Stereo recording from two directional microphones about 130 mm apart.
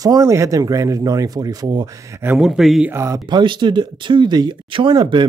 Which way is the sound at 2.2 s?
15° right (ahead or behind).